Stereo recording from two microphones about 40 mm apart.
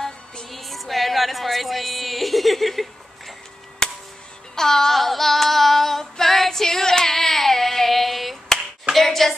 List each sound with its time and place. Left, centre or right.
0.5 s music: centre
3.8 s music: centre
4.6 s female singing: centre
8.9 s hands: centre